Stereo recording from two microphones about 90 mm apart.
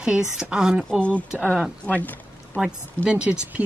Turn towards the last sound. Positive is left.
turn(degrees=-15)  # may be behind; listen again after turning